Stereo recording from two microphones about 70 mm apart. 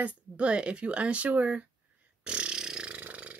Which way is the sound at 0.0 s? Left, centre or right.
Centre.